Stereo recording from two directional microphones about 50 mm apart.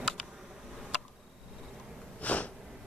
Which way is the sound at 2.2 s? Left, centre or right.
Left.